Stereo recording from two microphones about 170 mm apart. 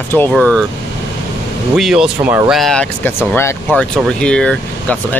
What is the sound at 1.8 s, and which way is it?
Speech, 5° right (ahead or behind).